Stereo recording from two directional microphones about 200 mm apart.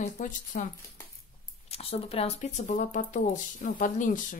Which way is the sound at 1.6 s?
30° left (ahead or behind).